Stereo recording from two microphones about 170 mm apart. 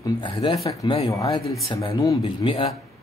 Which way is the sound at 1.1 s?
20° left (ahead or behind).